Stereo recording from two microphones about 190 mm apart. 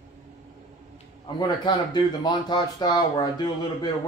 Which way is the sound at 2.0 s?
25° left (ahead or behind).